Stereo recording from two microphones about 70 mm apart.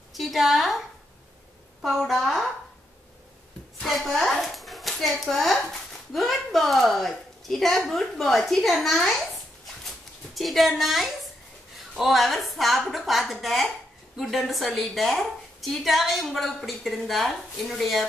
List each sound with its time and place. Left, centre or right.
0.1 s a sound: centre
1.8 s a woman's voice: centre
3.8 s hands: centre
5.2 s a woman's voice: centre
9.8 s a sound: centre
11.9 s a woman's voice: centre